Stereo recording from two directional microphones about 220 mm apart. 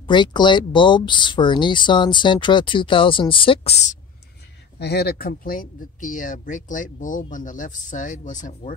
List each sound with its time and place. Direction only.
0.0 s speech: 20° left (ahead or behind)
4.7 s speech: 50° left (ahead or behind)